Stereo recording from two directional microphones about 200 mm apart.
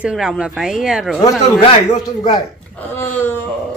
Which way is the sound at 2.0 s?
20° left (ahead or behind).